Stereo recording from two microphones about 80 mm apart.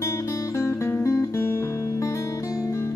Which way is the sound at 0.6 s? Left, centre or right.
Left.